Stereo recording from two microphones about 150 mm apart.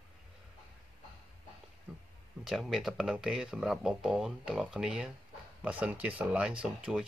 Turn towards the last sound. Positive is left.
turn(degrees=-5)  # may be behind; listen again after turning